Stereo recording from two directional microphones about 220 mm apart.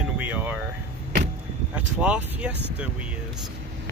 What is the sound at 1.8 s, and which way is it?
Speech, 5° right (ahead or behind).